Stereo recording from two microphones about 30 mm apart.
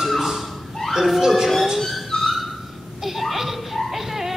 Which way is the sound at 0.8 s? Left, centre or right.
Centre.